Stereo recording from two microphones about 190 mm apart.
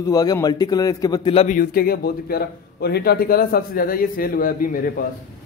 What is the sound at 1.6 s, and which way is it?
Speech, 50° left (ahead or behind).